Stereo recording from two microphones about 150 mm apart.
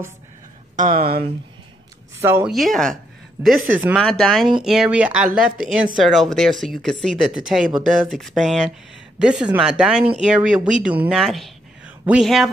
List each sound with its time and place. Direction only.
0.7 s speech: 70° right (ahead or behind)
2.1 s speech: 15° right (ahead or behind)
2.4 s speech: centre (ahead or behind)
3.4 s speech: 10° right (ahead or behind)
3.9 s speech: centre (ahead or behind)
11.1 s a sound: centre (ahead or behind)
12.1 s speech: centre (ahead or behind)